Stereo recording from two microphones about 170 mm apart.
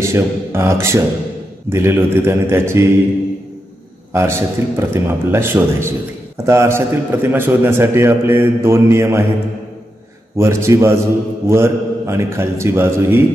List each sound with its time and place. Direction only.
0.0 s a man's voice: 15° right (ahead or behind)
4.1 s a man's voice: 15° right (ahead or behind)
10.3 s a man's voice: 15° right (ahead or behind)